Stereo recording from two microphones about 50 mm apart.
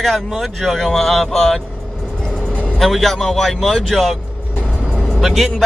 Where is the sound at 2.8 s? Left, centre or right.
Centre.